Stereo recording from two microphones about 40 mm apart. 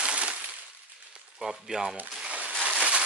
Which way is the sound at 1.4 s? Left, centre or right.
Centre.